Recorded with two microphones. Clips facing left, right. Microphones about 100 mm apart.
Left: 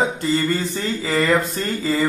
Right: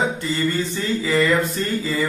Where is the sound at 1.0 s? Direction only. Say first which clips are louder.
Right 1 dB; 50° left (ahead or behind).